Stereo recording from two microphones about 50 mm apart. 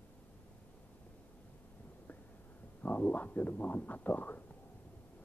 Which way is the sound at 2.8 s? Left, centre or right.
Left.